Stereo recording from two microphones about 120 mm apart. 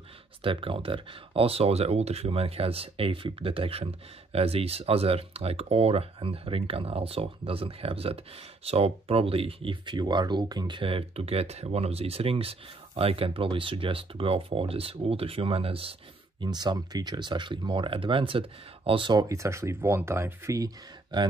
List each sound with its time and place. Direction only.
0.4 s speech: 50° right (ahead or behind)
16.4 s speech: 35° right (ahead or behind)
19.1 s speech: 25° right (ahead or behind)
20.5 s speech: 35° right (ahead or behind)